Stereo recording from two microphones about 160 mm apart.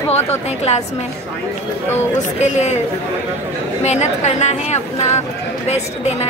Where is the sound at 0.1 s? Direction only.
40° left (ahead or behind).